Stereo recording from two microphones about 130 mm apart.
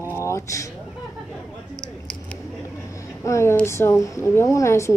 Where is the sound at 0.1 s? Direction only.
20° left (ahead or behind).